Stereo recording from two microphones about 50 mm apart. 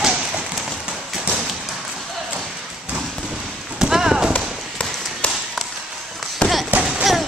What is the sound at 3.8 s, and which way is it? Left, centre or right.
Clip-clop, centre.